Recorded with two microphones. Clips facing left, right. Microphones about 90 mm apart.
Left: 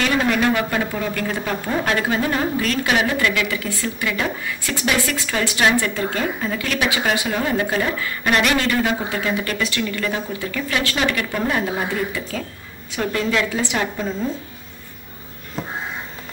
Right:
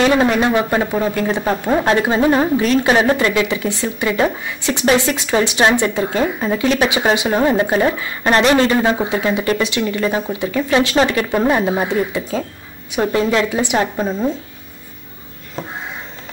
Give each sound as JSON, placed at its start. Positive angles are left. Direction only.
{"t": 0.0, "sound": "speech", "side_deg": -25}
{"t": 2.9, "sound": "speech", "side_deg": -35}